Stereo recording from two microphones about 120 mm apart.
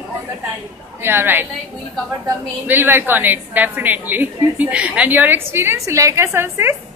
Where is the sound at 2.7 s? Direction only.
15° right (ahead or behind).